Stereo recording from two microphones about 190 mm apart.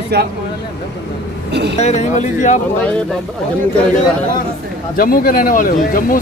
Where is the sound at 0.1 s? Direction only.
60° right (ahead or behind).